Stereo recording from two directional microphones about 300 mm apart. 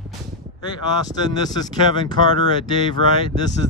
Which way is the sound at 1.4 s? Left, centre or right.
Centre.